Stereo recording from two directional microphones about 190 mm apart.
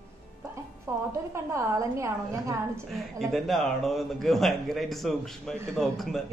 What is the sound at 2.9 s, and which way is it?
A man's voice, centre (ahead or behind).